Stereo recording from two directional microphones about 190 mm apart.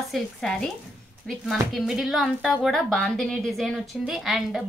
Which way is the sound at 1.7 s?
Centre (ahead or behind).